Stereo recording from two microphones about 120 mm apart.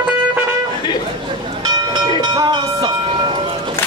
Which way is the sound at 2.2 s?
40° right (ahead or behind).